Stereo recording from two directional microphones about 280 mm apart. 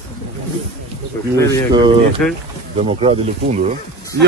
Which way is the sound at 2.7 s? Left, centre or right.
Right.